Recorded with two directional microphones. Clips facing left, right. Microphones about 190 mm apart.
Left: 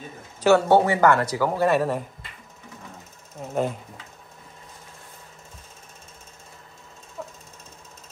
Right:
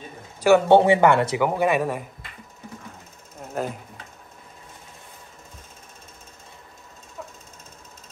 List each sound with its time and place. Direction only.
0.4 s speech: 15° right (ahead or behind)
0.7 s speech: 25° right (ahead or behind)
3.4 s speech: centre (ahead or behind)
7.2 s jackhammer: centre (ahead or behind)